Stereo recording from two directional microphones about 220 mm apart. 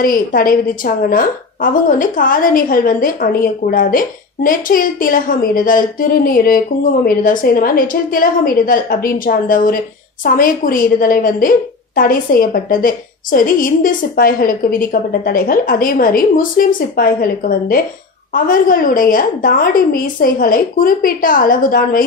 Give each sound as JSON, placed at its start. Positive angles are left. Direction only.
{"t": 0.0, "sound": "a woman's voice", "side_deg": 40}